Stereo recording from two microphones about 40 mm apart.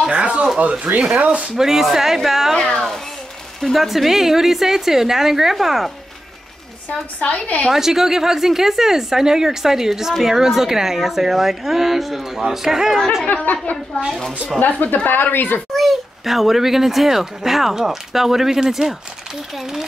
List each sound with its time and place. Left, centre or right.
0.1 s speech: right
1.6 s speech: centre
3.7 s speech: centre
7.2 s a woman's voice: left
7.7 s speech: centre
13.3 s a woman's voice: left
14.6 s a woman's voice: left
15.7 s speech: centre